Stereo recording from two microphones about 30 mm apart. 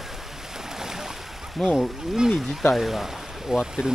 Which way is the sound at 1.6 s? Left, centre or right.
Centre.